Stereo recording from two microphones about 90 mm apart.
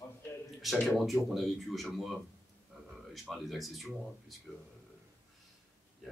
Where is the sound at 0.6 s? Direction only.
Centre (ahead or behind).